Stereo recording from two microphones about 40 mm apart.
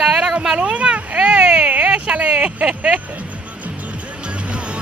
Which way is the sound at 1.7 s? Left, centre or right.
Right.